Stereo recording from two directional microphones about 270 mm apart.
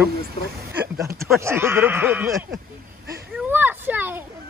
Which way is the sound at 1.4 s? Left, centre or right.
Centre.